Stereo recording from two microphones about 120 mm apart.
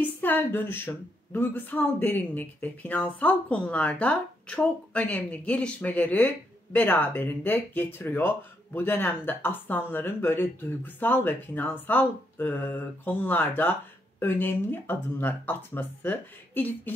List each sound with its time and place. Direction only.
0.0 s a woman's voice: 15° left (ahead or behind)